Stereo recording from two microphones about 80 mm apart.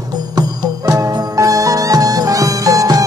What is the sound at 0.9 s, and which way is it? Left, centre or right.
Music, right.